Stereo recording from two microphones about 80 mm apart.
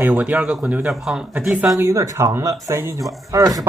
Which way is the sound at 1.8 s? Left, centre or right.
Right.